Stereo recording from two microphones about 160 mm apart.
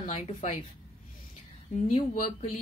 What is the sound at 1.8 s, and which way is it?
Speech, 45° left (ahead or behind).